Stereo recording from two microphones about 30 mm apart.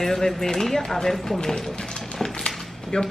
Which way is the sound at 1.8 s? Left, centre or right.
Left.